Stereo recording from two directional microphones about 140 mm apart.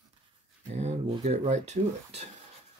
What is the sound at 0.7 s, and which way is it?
Speech, 50° right (ahead or behind).